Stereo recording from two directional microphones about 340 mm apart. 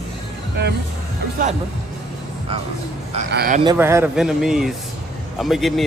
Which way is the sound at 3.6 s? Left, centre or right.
Centre.